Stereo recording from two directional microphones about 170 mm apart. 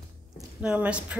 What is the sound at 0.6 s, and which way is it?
Speech, 5° right (ahead or behind).